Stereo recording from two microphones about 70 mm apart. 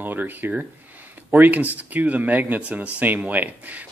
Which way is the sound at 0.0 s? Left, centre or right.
Right.